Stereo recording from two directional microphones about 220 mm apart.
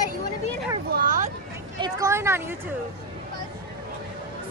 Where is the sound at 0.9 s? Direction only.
35° right (ahead or behind).